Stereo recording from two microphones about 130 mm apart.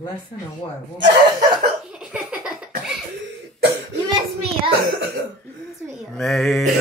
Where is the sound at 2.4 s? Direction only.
5° right (ahead or behind).